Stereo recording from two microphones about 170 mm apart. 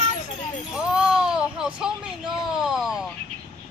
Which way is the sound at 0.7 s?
5° right (ahead or behind).